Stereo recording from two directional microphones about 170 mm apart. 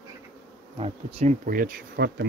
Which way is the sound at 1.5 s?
55° right (ahead or behind).